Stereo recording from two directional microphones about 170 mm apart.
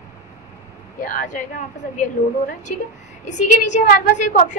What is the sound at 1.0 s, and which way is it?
A woman's voice, 50° left (ahead or behind).